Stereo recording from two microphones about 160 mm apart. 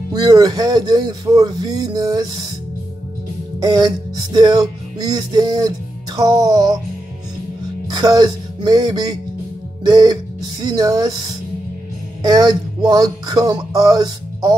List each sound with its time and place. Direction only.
0.1 s speech: 25° right (ahead or behind)
3.5 s speech: 25° right (ahead or behind)
7.9 s speech: 25° right (ahead or behind)